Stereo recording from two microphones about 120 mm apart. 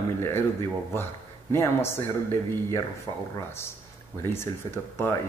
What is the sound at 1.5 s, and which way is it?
Speech, 20° left (ahead or behind).